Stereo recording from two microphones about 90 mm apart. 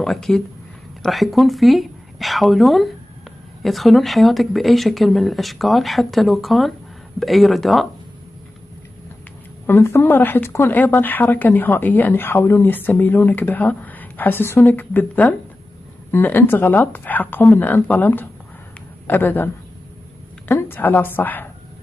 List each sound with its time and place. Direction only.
0.0 s speech: 5° left (ahead or behind)
9.7 s speech: 25° left (ahead or behind)